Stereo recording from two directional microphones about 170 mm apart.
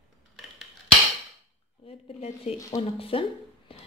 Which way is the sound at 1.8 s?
35° left (ahead or behind).